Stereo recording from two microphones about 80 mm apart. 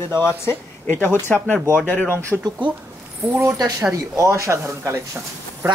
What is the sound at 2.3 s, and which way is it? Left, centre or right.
Speech, centre.